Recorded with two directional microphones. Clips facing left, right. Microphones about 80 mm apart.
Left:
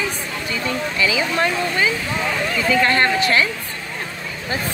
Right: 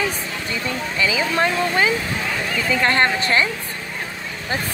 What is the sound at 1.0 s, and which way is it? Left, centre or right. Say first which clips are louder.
Speech: right 1 dB; right.